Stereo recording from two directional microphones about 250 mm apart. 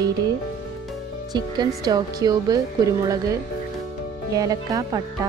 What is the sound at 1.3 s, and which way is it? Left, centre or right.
Speech, centre.